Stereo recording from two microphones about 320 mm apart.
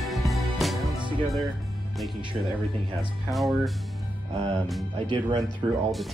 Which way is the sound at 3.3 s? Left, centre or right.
Centre.